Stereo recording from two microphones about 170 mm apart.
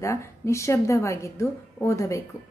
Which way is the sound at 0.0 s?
15° left (ahead or behind).